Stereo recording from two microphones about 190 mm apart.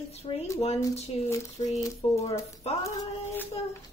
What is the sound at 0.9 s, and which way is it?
Speech, 35° left (ahead or behind).